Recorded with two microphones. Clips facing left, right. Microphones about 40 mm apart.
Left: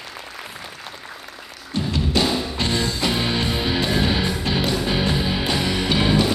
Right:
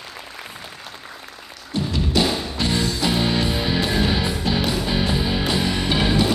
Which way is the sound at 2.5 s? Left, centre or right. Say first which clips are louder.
Even; left.